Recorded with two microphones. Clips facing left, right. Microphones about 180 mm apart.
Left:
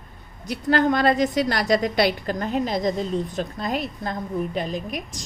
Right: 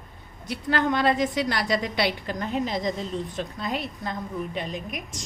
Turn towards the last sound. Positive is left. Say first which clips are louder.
# left 4 dB
turn(degrees=35)  # may be behind; listen again after turning